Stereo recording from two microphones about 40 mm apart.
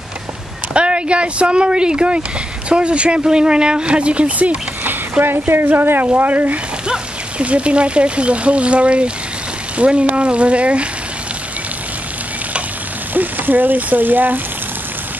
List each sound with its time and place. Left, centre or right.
0.7 s speech: right
5.2 s speech: right
5.8 s speech: right
6.1 s speech: right
6.9 s speech: right
13.1 s speech: right